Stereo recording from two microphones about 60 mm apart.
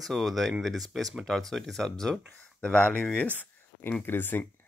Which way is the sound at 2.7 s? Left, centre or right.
Left.